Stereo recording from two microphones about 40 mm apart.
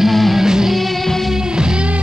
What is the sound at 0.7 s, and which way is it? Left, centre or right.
Music, centre.